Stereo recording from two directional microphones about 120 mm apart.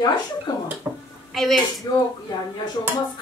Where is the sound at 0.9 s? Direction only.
20° right (ahead or behind).